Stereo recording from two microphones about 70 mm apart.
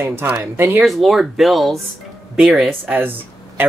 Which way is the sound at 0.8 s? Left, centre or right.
Centre.